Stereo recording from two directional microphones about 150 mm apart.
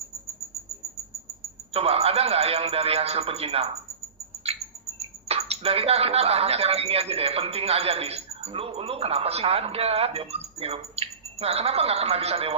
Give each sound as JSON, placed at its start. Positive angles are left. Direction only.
{"t": 1.7, "sound": "a man's voice", "side_deg": -40}